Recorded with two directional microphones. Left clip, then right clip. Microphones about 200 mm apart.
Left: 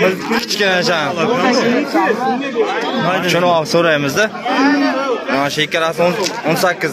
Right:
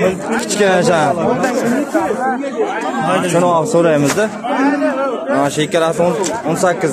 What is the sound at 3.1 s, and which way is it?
Speech, 15° left (ahead or behind).